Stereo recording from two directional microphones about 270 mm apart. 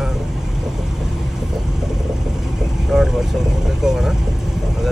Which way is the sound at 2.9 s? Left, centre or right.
Centre.